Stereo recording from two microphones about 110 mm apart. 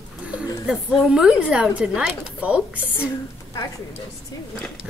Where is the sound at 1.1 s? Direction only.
5° right (ahead or behind).